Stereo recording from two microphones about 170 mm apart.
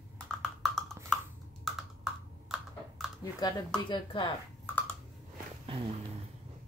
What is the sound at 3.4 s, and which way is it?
Speech, 30° left (ahead or behind).